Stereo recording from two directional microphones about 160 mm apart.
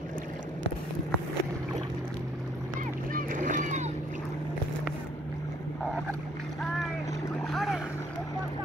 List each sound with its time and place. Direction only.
3.1 s boat: 55° right (ahead or behind)
7.5 s boat: centre (ahead or behind)